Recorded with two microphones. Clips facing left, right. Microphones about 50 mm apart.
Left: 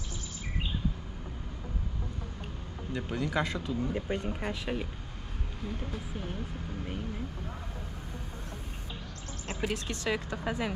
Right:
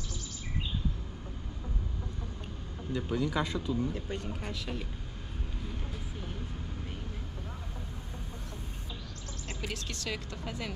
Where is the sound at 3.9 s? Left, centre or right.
Left.